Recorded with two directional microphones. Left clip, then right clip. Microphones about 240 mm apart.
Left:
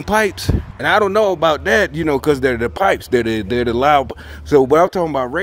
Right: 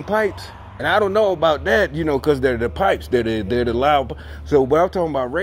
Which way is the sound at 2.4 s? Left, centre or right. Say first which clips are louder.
Left 2 dB; left.